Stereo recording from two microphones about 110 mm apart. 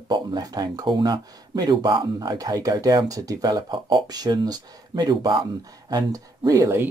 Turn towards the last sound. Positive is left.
turn(degrees=-25)  # may be behind; listen again after turning